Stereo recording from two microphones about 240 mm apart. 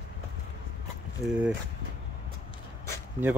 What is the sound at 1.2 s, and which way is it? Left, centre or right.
Speech, centre.